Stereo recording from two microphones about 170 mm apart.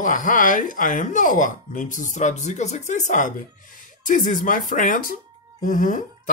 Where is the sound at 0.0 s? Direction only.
50° left (ahead or behind).